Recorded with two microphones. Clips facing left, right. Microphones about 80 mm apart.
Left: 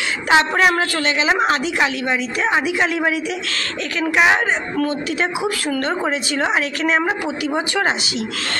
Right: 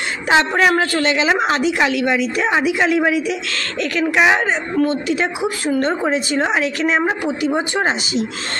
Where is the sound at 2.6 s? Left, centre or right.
Left.